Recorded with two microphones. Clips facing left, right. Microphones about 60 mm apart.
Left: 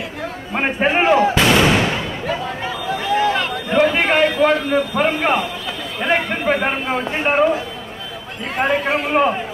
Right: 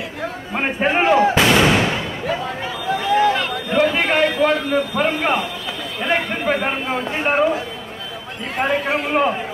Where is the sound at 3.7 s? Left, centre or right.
Left.